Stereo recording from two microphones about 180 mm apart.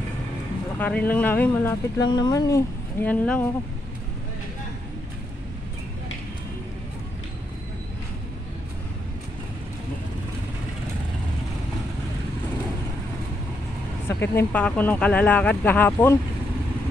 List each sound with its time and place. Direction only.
0.7 s speech: 10° left (ahead or behind)
14.0 s speech: 10° left (ahead or behind)